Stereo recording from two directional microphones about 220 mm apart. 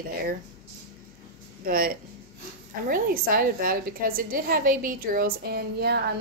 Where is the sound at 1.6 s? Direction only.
40° right (ahead or behind).